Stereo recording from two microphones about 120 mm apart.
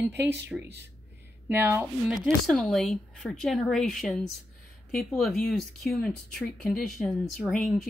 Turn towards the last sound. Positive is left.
turn(degrees=0)  # may be behind; listen again after turning